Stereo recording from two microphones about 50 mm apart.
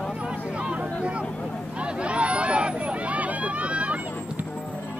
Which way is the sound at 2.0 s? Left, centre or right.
Right.